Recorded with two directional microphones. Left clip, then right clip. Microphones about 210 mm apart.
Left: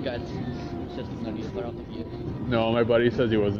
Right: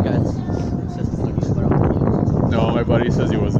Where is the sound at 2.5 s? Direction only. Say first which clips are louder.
Even; 50° right (ahead or behind).